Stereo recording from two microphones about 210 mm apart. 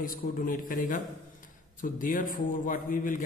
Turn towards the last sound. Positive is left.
turn(degrees=40)  # may be behind; listen again after turning